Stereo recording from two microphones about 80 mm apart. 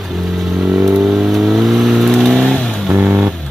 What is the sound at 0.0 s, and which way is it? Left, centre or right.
Vehicle, centre.